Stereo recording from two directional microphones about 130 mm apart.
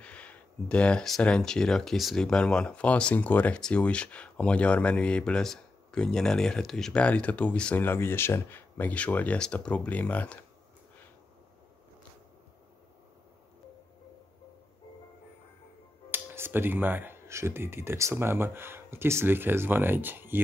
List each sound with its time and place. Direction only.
0.0 s speech: 10° left (ahead or behind)
16.1 s speech: 15° right (ahead or behind)